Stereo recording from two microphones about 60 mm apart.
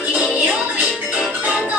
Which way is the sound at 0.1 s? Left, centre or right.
Centre.